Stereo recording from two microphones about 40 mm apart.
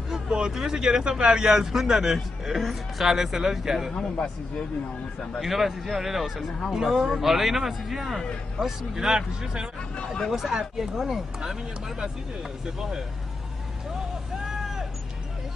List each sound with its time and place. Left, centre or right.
0.1 s a sound: centre
0.6 s a man's voice: centre
5.4 s a man's voice: centre
9.1 s a man's voice: right
14.4 s vehicle: centre